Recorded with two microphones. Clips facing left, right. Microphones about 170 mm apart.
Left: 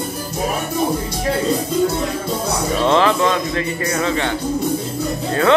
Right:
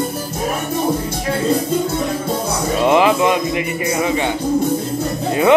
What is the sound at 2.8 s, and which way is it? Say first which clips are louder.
A man's voice: right 2 dB; 15° right (ahead or behind).